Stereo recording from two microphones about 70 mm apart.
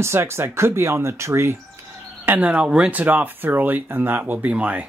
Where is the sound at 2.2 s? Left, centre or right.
Right.